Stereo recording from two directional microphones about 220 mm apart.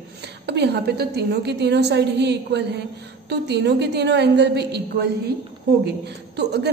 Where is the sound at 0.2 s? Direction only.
50° right (ahead or behind).